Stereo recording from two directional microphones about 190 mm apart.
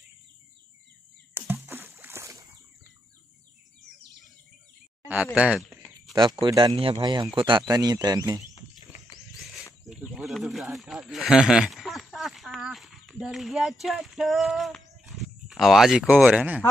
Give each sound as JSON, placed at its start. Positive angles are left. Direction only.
{"t": 1.3, "sound": "a sound", "side_deg": -10}
{"t": 5.0, "sound": "speech", "side_deg": -10}
{"t": 6.4, "sound": "speech", "side_deg": -25}
{"t": 9.4, "sound": "wild animals", "side_deg": 0}
{"t": 9.8, "sound": "speech", "side_deg": -5}